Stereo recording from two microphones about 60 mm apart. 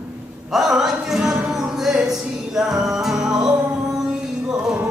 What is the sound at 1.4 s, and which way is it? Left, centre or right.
Music, centre.